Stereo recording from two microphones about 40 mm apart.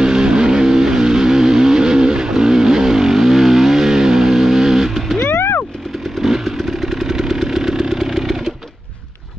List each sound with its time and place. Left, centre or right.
0.0 s vehicle: right
5.3 s a sound: left
6.2 s motorcycle: centre